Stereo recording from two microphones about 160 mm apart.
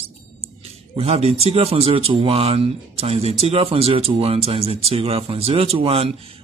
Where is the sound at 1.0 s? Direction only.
40° right (ahead or behind).